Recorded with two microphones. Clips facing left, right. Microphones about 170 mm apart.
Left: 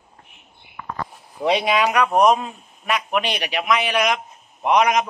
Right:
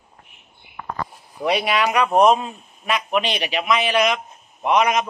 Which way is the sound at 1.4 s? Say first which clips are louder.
Left 1 dB; 15° left (ahead or behind).